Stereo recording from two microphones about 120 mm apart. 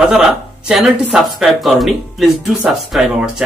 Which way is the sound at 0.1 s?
5° right (ahead or behind).